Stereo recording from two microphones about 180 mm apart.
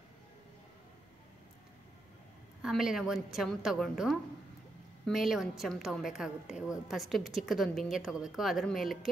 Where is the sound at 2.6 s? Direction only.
5° right (ahead or behind).